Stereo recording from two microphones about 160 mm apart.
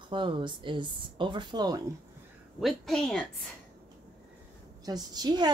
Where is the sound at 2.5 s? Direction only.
Centre (ahead or behind).